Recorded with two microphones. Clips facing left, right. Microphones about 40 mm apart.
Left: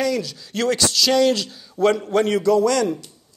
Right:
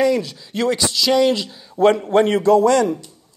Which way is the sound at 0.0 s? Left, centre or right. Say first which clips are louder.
Right 5 dB; right.